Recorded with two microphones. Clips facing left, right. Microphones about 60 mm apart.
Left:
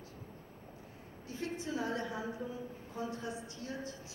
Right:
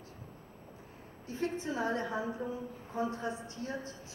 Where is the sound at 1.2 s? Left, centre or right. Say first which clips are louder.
Right 5 dB; right.